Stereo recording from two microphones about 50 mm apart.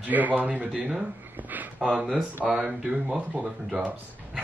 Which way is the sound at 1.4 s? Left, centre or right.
Right.